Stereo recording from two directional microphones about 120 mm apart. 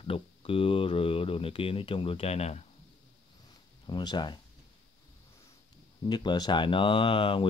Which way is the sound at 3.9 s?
40° left (ahead or behind).